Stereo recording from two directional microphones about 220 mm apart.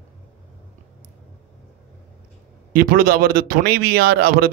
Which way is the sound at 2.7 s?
40° right (ahead or behind).